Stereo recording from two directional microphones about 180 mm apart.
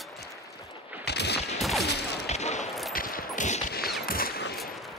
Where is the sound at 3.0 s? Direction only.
50° left (ahead or behind).